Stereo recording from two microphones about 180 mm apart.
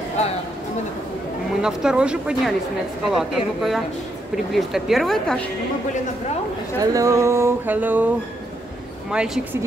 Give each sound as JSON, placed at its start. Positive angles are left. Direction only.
{"t": 1.5, "sound": "speech", "side_deg": -5}
{"t": 6.8, "sound": "a sound", "side_deg": -20}
{"t": 9.1, "sound": "speech", "side_deg": -5}